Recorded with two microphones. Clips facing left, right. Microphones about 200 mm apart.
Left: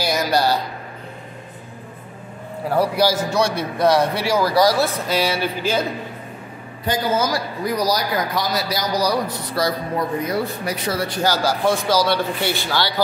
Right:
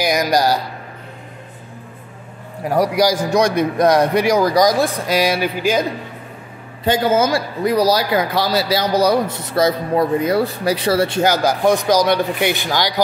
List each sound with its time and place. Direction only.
0.0 s a man's voice: 15° right (ahead or behind)
2.7 s a man's voice: 15° right (ahead or behind)
6.8 s a man's voice: 25° right (ahead or behind)